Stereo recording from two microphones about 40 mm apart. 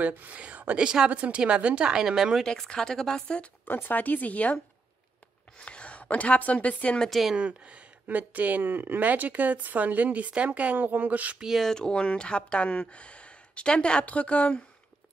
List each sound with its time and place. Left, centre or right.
0.0 s speech: right
0.7 s speech: right
1.1 s a woman's voice: right
1.4 s speech: right
2.0 s speech: centre
2.4 s speech: centre
3.6 s speech: left
5.7 s a woman's voice: left
7.1 s a woman's voice: centre
7.3 s speech: right
11.6 s speech: centre; by 14.6 s left